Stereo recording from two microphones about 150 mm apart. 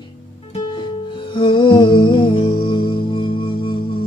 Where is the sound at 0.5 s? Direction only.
35° left (ahead or behind).